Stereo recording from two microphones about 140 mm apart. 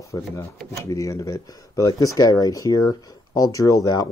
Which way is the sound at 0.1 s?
20° left (ahead or behind).